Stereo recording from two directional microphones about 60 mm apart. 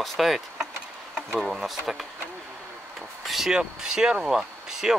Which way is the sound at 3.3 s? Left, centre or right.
Centre.